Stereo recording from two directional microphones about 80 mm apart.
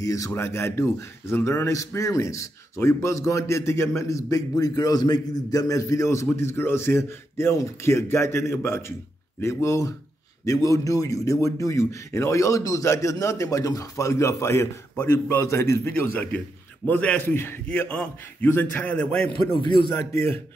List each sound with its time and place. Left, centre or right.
0.0 s speech: left
0.3 s a man's voice: left; by 19.4 s centre
19.5 s a man's voice: left
20.1 s a man's voice: left